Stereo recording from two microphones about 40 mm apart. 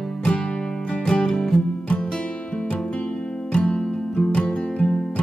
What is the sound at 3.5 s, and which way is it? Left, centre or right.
Music, left.